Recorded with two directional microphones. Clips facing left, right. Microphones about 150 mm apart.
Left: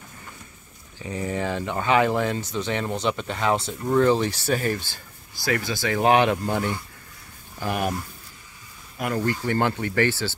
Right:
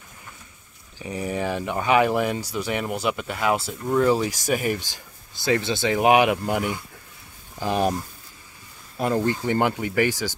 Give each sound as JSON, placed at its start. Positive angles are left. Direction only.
{"t": 0.9, "sound": "speech", "side_deg": -15}
{"t": 8.9, "sound": "speech", "side_deg": -25}